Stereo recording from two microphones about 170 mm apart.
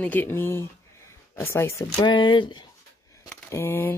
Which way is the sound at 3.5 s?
15° left (ahead or behind).